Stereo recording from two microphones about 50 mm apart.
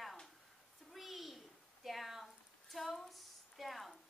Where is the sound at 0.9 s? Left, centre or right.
Centre.